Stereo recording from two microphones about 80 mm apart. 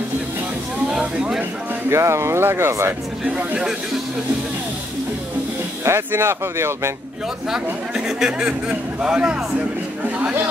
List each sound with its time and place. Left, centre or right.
0.8 s a sound: centre
1.9 s speech: right
3.3 s speech: centre
5.9 s speech: right
7.5 s speech: centre
10.0 s a sound: centre